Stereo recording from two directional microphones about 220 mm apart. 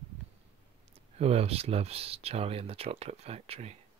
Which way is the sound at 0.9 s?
30° right (ahead or behind).